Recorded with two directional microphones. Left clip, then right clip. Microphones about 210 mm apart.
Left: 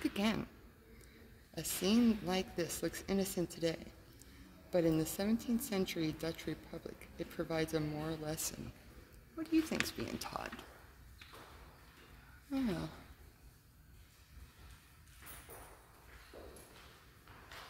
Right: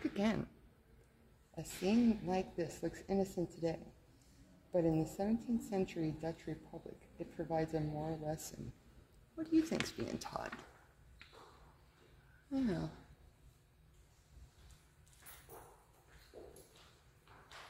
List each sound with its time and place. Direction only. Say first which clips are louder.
0.1 s speech: left 1 dB; 10° left (ahead or behind)
1.5 s a woman's voice: left 2 dB; 20° left (ahead or behind)
4.7 s a woman's voice: left 2 dB; 25° left (ahead or behind)
9.4 s speech: even; 5° left (ahead or behind)
12.4 s speech: even; 5° left (ahead or behind)
16.3 s clip-clop: left 1 dB; 25° left (ahead or behind)